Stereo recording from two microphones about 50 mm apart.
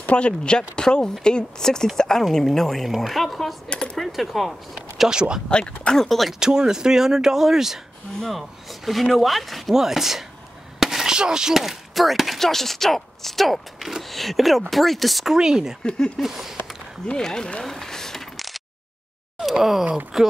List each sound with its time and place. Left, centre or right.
0.1 s speech: left; by 3.5 s centre
3.6 s speech: centre
3.9 s speech: centre
4.9 s speech: centre
5.9 s speech: centre
6.4 s speech: centre
15.3 s speech: centre
15.8 s speech: centre
16.2 s speech: centre
17.1 s speech: centre
17.6 s a sound: centre
19.3 s speech: centre